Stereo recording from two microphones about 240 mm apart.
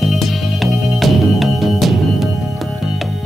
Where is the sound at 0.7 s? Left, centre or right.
Centre.